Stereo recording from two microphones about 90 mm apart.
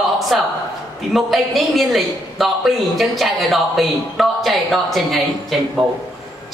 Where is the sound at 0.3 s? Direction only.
5° right (ahead or behind).